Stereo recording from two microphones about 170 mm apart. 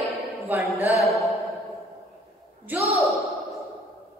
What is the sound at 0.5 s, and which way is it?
Speech, 10° right (ahead or behind).